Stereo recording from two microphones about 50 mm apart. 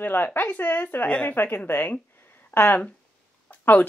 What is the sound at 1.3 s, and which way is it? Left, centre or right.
A woman's voice, left.